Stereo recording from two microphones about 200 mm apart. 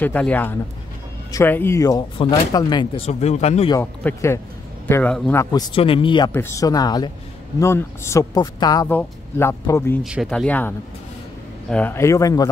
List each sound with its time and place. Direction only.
0.0 s speech: 10° left (ahead or behind); by 3.7 s 30° left (ahead or behind)
3.7 s speech: 10° left (ahead or behind)
6.3 s speech: 15° left (ahead or behind)
10.0 s speech: 5° right (ahead or behind)
11.7 s speech: 10° left (ahead or behind)